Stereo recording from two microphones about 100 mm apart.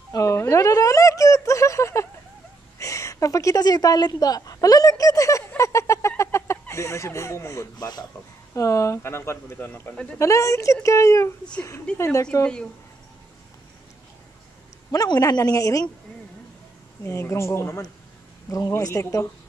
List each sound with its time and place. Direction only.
0.1 s a woman's voice: 30° left (ahead or behind)
5.6 s a sound: 30° left (ahead or behind)
8.5 s speech: 30° left (ahead or behind)
14.9 s speech: 40° left (ahead or behind)
17.0 s speech: 25° left (ahead or behind)